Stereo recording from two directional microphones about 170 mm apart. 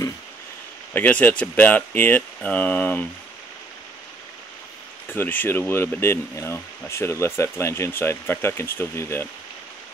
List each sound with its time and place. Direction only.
0.9 s speech: 10° left (ahead or behind)
5.0 s speech: 10° left (ahead or behind)